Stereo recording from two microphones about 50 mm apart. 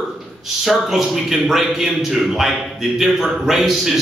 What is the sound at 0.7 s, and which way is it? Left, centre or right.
A man's voice, centre.